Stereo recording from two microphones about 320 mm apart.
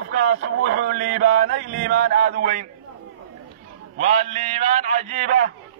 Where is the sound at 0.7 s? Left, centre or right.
Right.